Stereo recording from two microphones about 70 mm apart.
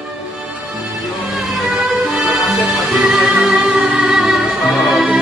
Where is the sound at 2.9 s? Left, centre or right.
Centre.